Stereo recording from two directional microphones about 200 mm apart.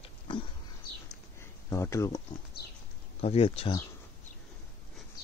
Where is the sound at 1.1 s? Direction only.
15° left (ahead or behind).